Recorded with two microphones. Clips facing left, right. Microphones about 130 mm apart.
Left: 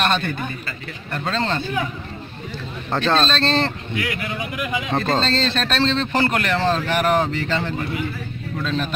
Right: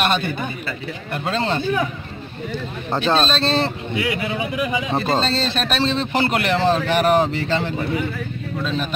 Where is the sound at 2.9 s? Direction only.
10° right (ahead or behind).